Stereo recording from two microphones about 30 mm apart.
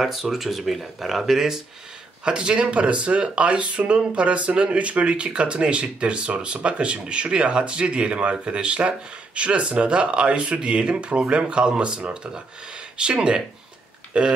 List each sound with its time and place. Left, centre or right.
0.0 s speech: centre
2.2 s speech: right